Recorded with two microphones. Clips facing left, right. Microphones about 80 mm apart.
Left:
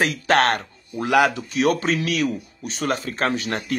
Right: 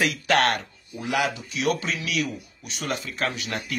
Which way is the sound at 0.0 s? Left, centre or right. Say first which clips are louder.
Left 3 dB; left.